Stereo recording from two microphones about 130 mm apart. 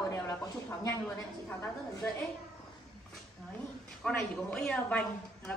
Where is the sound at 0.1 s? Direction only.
25° left (ahead or behind).